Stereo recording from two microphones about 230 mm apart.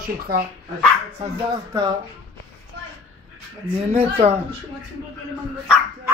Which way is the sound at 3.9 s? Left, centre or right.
Right.